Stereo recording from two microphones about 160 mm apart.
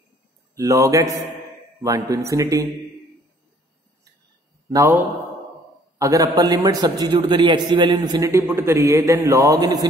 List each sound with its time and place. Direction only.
0.6 s a man's voice: 20° right (ahead or behind)
4.6 s a man's voice: 15° right (ahead or behind)